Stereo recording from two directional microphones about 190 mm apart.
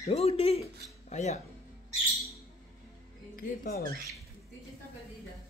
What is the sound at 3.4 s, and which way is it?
Speech, 55° left (ahead or behind).